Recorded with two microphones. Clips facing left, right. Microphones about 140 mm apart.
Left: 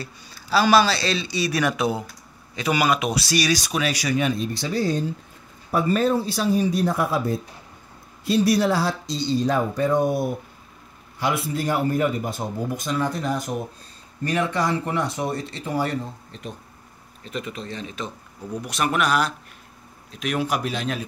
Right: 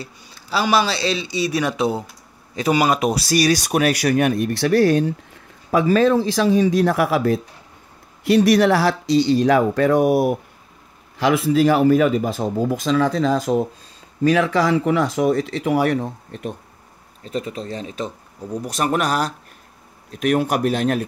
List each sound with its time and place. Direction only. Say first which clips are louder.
0.0 s speech: right 1 dB; 20° right (ahead or behind); by 5.1 s 75° right (ahead or behind)
5.7 s speech: right 5 dB; 90° right; by 16.5 s 55° right (ahead or behind)
17.2 s speech: right 5 dB; 35° right (ahead or behind)
20.1 s speech: right 6 dB; 50° right (ahead or behind)